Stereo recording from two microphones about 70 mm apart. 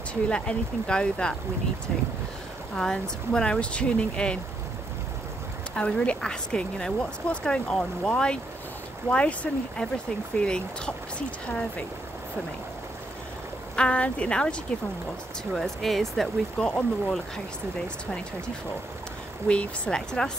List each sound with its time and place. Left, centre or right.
0.1 s speech: centre
2.7 s speech: centre
5.8 s speech: centre
13.7 s speech: centre
19.4 s speech: centre